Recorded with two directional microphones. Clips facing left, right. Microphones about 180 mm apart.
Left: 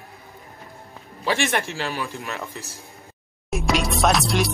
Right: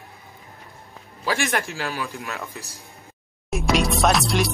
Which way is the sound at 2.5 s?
15° right (ahead or behind).